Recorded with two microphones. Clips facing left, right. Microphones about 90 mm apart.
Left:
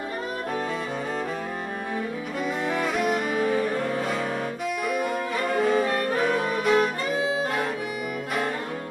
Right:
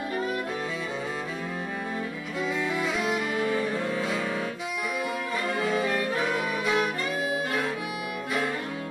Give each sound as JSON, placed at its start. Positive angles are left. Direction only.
{"t": 2.7, "sound": "music", "side_deg": 50}
{"t": 5.6, "sound": "music", "side_deg": 45}
{"t": 7.2, "sound": "music", "side_deg": 25}